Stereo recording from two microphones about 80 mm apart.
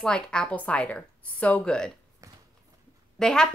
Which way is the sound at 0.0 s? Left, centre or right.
Centre.